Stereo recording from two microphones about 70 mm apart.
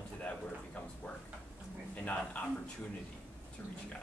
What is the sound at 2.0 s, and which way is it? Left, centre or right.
Speech, centre.